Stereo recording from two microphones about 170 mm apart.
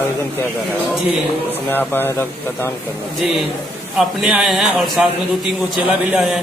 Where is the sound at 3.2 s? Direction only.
Centre (ahead or behind).